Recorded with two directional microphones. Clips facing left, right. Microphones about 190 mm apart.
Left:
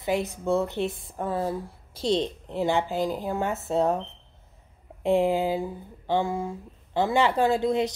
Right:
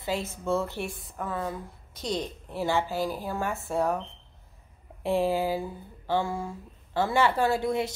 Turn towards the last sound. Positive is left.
turn(degrees=20)  # may be behind; listen again after turning